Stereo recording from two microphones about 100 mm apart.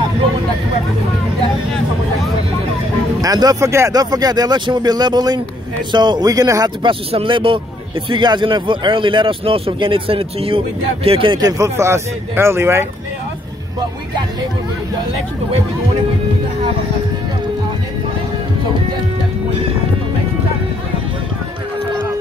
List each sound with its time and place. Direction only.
3.2 s speech: 40° right (ahead or behind)
3.9 s speech: 40° right (ahead or behind)
6.8 s speech: 70° right (ahead or behind)
11.3 s speech: 40° right (ahead or behind)